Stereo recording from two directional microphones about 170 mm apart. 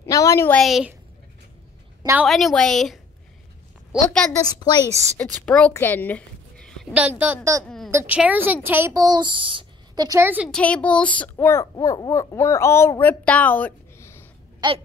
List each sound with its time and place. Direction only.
0.0 s a child's voice: 20° left (ahead or behind)
0.6 s a woman's voice: centre (ahead or behind)
2.2 s a woman's voice: centre (ahead or behind)
4.4 s a woman's voice: 25° left (ahead or behind)
5.1 s a woman's voice: 10° left (ahead or behind); by 7.6 s 15° right (ahead or behind)
7.6 s a sound: 5° left (ahead or behind)
7.9 s a woman's voice: 10° right (ahead or behind)
10.5 s a child's voice: 5° left (ahead or behind)
14.6 s a child's voice: 25° right (ahead or behind)